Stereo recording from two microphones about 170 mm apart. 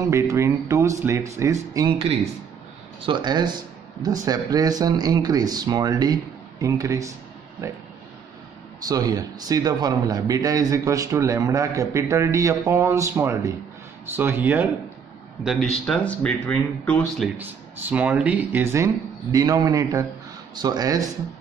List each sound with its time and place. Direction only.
0.1 s a man's voice: 15° right (ahead or behind)
8.8 s a man's voice: 20° right (ahead or behind)
15.8 s speech: 5° left (ahead or behind)
17.4 s a man's voice: 10° right (ahead or behind)